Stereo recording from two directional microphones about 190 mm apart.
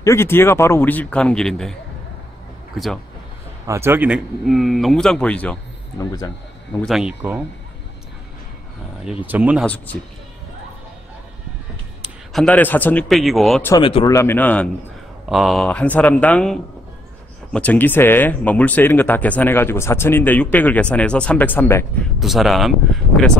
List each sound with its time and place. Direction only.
0.0 s speech: 15° left (ahead or behind)
3.6 s speech: 15° right (ahead or behind); by 5.6 s 5° left (ahead or behind)
5.9 s speech: 20° left (ahead or behind)
6.8 s speech: centre (ahead or behind)
9.2 s speech: 10° right (ahead or behind)
12.3 s speech: 5° left (ahead or behind)
13.7 s speech: 25° left (ahead or behind)
14.1 s speech: 10° left (ahead or behind)
22.2 s speech: centre (ahead or behind)